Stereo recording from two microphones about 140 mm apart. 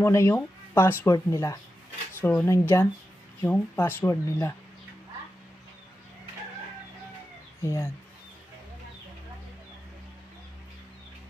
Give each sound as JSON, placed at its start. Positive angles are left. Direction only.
{"t": 0.0, "sound": "speech", "side_deg": 20}
{"t": 7.6, "sound": "speech", "side_deg": 20}